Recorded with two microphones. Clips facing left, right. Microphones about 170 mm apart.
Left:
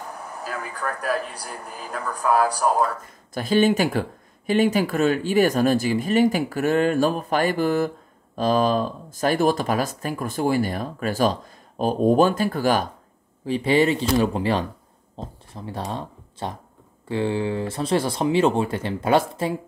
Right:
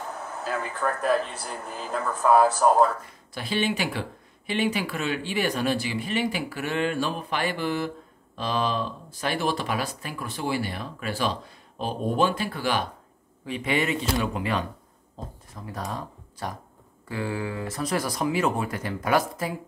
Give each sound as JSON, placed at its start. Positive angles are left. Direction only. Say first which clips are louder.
{"t": 0.4, "sound": "speech", "louder": "right 3 dB", "side_deg": 0}
{"t": 1.1, "sound": "speech", "louder": "right 2 dB", "side_deg": -25}
{"t": 3.3, "sound": "speech", "louder": "left 8 dB", "side_deg": 45}
{"t": 13.5, "sound": "speech", "louder": "left 7 dB", "side_deg": 30}